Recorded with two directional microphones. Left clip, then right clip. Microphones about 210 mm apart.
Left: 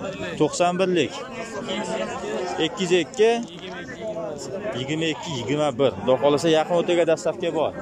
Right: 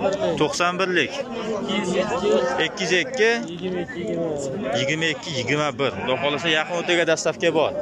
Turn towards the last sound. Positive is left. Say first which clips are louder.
# right 3 dB
turn(degrees=0)  # may be behind; listen again after turning